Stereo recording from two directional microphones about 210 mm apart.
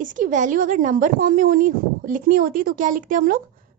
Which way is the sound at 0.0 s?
40° right (ahead or behind).